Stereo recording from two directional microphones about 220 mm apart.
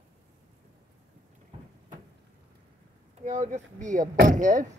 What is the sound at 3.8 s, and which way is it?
Speech, 35° right (ahead or behind).